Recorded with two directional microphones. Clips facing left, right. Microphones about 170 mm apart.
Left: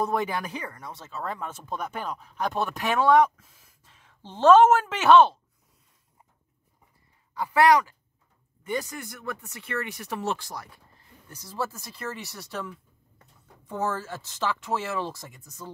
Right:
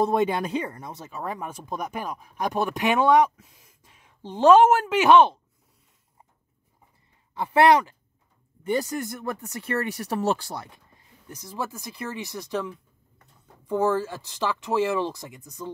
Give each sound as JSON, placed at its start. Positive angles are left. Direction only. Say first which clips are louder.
{"t": 0.0, "sound": "speech", "louder": "right 5 dB", "side_deg": -25}
{"t": 7.3, "sound": "speech", "louder": "right 2 dB", "side_deg": -25}